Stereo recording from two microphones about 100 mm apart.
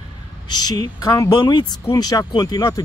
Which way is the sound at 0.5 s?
45° left (ahead or behind).